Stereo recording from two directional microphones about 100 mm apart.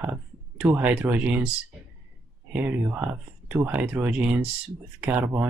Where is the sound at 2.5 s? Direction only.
20° right (ahead or behind).